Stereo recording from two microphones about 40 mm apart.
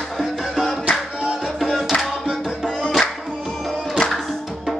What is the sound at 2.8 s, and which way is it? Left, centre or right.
Music, centre.